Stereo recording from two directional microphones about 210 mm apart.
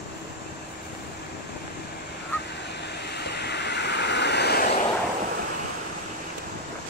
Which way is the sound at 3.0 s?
50° left (ahead or behind).